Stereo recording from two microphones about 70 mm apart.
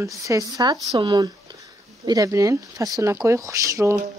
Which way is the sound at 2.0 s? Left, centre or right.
Right.